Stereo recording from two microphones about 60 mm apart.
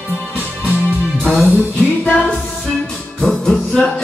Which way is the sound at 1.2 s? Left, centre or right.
Centre.